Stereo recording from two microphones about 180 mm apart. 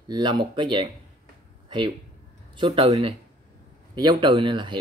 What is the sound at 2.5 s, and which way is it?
Speech, 30° right (ahead or behind).